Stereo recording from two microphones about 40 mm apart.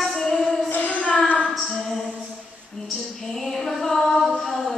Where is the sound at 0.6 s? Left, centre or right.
Left.